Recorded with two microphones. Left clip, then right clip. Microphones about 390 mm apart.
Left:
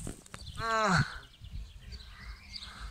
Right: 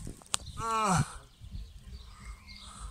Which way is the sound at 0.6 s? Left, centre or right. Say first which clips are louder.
Left 1 dB; centre.